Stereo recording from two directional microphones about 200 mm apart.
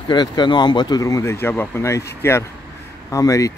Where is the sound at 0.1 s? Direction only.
20° left (ahead or behind).